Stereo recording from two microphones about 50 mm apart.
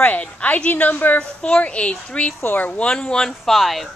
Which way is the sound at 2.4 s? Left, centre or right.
Left.